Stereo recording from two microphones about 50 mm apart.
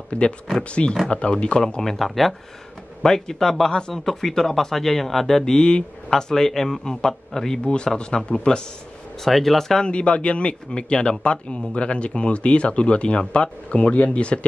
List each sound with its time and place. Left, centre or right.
0.1 s a man's voice: left
9.2 s speech: centre
9.8 s a man's voice: left